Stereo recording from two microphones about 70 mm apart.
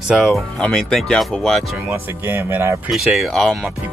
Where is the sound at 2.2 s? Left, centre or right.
Right.